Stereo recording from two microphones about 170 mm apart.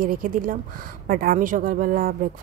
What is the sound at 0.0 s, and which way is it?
A woman's voice, 55° right (ahead or behind).